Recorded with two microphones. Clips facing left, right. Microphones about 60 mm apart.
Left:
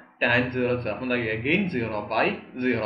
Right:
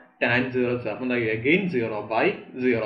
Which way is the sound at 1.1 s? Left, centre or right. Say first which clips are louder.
Right 4 dB; centre.